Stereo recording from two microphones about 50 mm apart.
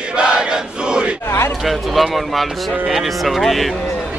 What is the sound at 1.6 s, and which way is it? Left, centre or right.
A man's voice, centre.